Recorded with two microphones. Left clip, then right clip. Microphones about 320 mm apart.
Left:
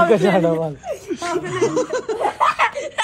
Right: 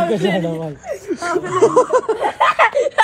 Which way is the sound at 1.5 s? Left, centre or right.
Centre.